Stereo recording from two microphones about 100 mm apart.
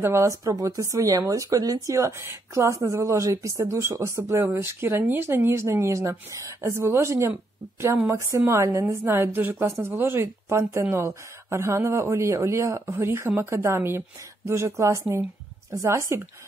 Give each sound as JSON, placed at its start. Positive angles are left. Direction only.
{"t": 0.0, "sound": "speech", "side_deg": -30}